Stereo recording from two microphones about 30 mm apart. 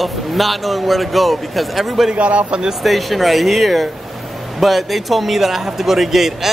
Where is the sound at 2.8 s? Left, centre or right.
Centre.